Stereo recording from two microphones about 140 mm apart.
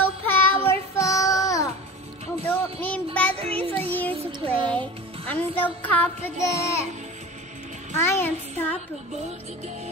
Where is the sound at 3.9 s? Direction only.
10° left (ahead or behind).